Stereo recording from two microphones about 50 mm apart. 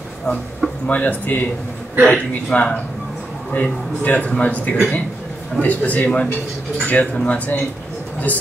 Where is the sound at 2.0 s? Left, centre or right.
Left.